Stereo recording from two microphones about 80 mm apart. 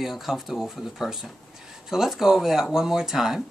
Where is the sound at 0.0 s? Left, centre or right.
Centre.